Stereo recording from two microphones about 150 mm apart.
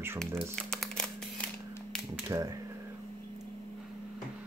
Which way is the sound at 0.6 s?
5° left (ahead or behind).